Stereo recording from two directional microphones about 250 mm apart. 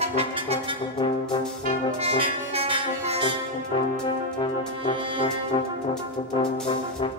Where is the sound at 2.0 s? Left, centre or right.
Right.